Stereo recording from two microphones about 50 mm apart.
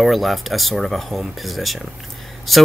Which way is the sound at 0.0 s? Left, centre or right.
Centre.